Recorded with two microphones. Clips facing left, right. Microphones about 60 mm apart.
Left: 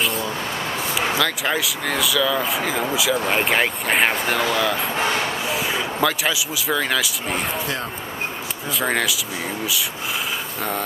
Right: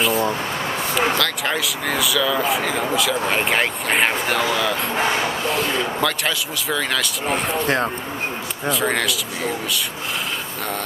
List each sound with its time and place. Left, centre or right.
1.1 s speech: centre
7.6 s speech: right
8.6 s speech: centre